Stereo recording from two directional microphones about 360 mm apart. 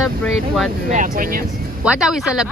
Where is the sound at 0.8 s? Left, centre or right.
Right.